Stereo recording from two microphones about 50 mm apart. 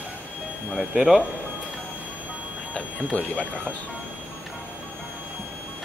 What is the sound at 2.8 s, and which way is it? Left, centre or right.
Speech, left.